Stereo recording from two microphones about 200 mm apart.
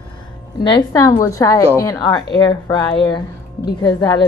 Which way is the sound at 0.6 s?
20° left (ahead or behind).